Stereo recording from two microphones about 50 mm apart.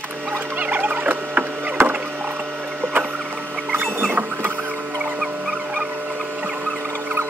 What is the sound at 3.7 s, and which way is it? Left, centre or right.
Rodents, right.